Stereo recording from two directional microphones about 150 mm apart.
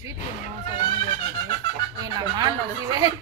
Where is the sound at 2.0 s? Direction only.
25° right (ahead or behind).